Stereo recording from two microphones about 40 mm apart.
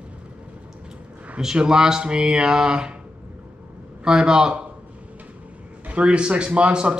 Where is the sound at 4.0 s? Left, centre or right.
Centre.